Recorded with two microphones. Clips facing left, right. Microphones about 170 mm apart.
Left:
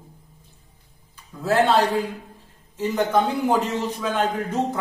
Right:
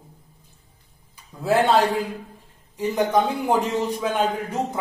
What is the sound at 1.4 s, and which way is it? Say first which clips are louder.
A man's voice: even; 10° right (ahead or behind).